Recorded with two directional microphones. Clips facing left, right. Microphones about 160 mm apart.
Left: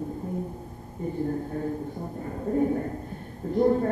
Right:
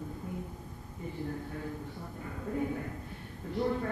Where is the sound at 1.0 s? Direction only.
45° left (ahead or behind).